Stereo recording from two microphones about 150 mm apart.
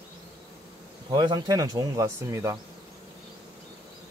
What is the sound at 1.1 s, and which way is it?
Speech, 25° right (ahead or behind).